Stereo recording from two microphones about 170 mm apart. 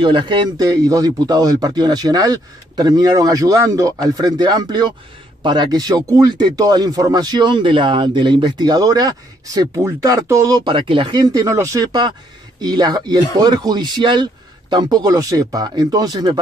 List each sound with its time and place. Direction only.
0.0 s a man's voice: 25° right (ahead or behind)